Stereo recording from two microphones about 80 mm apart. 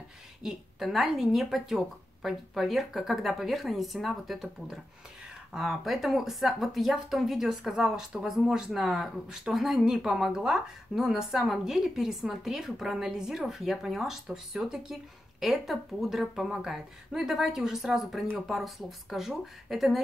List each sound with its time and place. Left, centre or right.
0.4 s speech: centre